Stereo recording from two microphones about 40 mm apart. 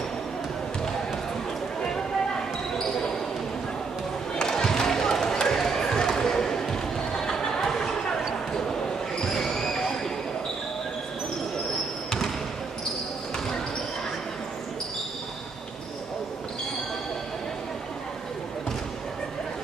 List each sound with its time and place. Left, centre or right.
4.4 s basketball bounce: centre
6.7 s a sound: centre
9.2 s basketball bounce: centre